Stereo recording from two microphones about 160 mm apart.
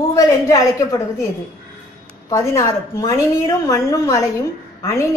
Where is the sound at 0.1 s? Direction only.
20° left (ahead or behind).